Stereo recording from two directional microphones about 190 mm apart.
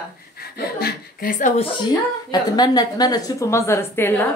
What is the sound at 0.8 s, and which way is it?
Speech, 50° left (ahead or behind).